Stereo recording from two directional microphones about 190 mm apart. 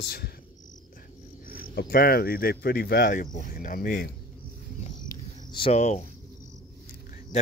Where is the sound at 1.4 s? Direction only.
50° left (ahead or behind).